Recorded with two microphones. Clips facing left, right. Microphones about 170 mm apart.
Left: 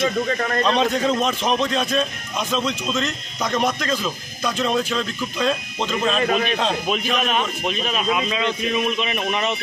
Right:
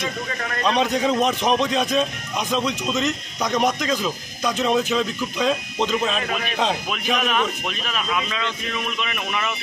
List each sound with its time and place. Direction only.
0.7 s speech: 15° right (ahead or behind)
7.2 s a man's voice: 20° left (ahead or behind)